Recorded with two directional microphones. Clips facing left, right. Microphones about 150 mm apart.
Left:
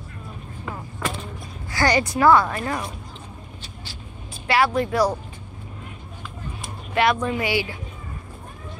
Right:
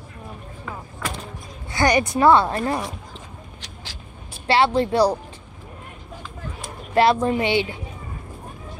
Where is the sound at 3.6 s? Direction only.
90° right.